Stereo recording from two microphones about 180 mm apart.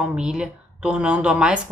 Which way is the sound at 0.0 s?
5° right (ahead or behind).